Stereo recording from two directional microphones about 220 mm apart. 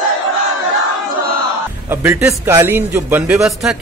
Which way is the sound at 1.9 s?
10° right (ahead or behind).